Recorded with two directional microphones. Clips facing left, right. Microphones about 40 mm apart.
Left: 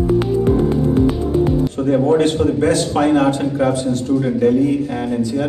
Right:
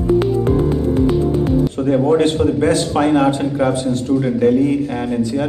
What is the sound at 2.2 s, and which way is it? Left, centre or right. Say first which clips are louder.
A man's voice: even; centre.